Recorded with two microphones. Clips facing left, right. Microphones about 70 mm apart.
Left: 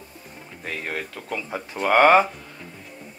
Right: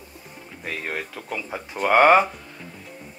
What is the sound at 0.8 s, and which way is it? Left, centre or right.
Speech, centre.